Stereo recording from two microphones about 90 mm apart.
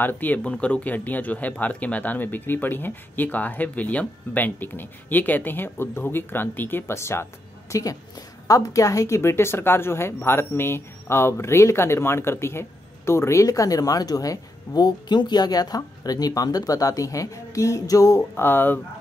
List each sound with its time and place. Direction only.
0.0 s speech: 20° left (ahead or behind)
7.7 s a woman's voice: 40° left (ahead or behind)
18.3 s speech: 25° left (ahead or behind)